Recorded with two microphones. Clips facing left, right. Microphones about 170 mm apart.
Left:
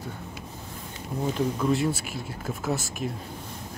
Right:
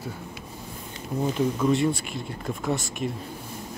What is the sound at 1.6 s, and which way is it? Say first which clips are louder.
Speech: right 2 dB; centre (ahead or behind).